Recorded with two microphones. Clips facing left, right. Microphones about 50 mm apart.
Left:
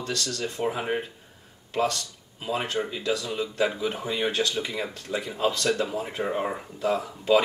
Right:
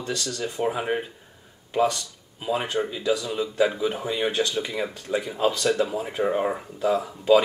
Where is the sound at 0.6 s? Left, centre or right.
Centre.